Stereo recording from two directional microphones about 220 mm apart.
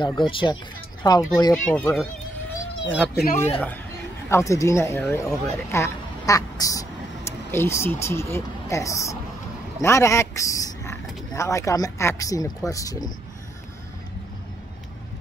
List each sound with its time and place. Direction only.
0.0 s speech: 20° left (ahead or behind)
1.7 s speech: 5° left (ahead or behind)
3.3 s speech: 10° left (ahead or behind)